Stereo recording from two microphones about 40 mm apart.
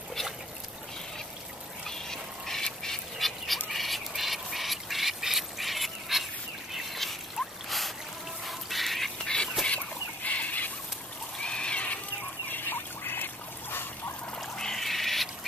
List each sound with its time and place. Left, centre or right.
1.9 s duck: centre
3.7 s squawk: centre
4.1 s duck: centre
6.7 s boat: centre
8.5 s duck: centre
9.2 s duck: left
9.7 s chicken: left
11.3 s a sound: left
12.4 s duck: left
14.4 s a sound: centre